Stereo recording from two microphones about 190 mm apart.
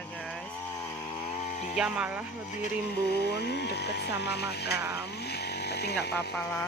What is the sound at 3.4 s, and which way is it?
Speech, 60° left (ahead or behind).